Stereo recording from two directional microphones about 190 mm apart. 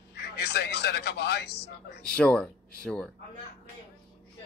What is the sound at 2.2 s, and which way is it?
Speech, 5° left (ahead or behind).